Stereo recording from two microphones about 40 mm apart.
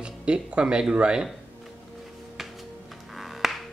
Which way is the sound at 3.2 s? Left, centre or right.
Centre.